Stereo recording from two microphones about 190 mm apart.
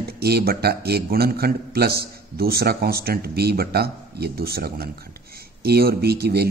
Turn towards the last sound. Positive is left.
turn(degrees=-55)  # may be behind; listen again after turning